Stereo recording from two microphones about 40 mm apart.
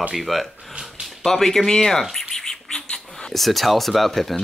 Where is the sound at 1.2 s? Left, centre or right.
Centre.